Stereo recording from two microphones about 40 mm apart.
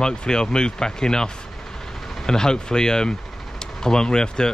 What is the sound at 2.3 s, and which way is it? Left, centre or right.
Speech, centre.